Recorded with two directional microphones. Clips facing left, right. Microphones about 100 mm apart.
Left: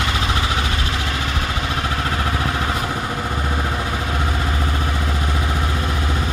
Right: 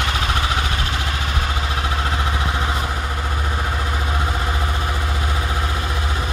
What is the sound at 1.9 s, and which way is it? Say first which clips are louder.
Vehicle: left 1 dB; 15° right (ahead or behind).